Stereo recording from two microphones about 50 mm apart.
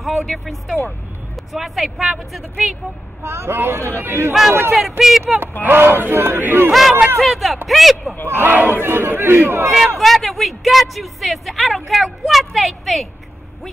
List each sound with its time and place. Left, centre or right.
0.0 s speech: centre
3.2 s speech: right
4.3 s speech: centre
5.7 s speech: right
6.7 s speech: centre
8.3 s speech: right
9.9 s speech: centre